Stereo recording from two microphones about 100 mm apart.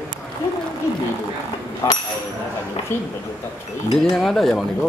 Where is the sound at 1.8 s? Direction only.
35° left (ahead or behind).